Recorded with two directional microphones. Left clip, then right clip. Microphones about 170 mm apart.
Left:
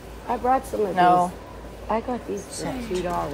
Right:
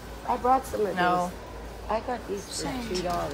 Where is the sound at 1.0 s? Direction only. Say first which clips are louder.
Left 8 dB; centre (ahead or behind).